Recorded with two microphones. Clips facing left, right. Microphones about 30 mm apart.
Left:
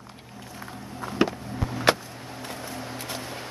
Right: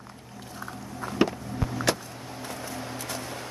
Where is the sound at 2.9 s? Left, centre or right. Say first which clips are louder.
Even; left.